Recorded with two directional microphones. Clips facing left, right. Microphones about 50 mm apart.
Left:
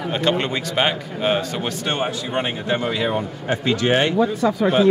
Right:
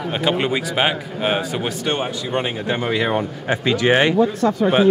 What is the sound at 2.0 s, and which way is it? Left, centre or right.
Speech, centre.